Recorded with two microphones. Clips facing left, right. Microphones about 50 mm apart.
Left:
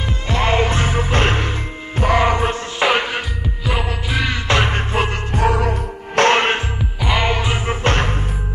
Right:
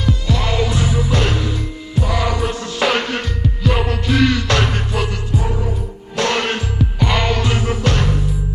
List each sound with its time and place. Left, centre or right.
0.0 s music: left
2.8 s music: centre; by 5.1 s left
5.3 s music: left
6.1 s music: left
7.0 s music: centre; by 8.3 s left